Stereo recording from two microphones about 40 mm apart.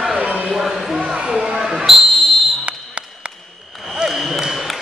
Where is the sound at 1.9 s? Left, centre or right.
Centre.